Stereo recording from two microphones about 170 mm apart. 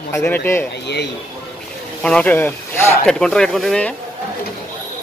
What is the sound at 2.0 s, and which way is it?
Speech, 5° left (ahead or behind).